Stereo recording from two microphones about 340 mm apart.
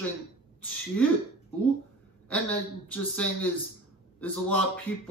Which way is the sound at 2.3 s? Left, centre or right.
Centre.